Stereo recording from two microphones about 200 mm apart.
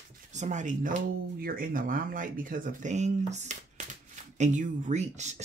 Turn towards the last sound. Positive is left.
turn(degrees=-35)  # may be behind; listen again after turning